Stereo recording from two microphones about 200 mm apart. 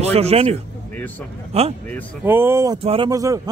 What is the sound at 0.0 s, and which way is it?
Speech, 30° right (ahead or behind).